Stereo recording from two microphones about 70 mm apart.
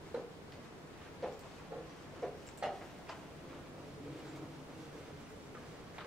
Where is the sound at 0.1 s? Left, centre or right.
Centre.